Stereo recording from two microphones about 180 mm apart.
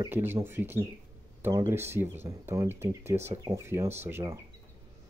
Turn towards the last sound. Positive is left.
turn(degrees=-15)  # may be behind; listen again after turning